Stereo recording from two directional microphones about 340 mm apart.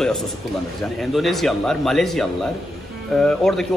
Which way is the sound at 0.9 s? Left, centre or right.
Centre.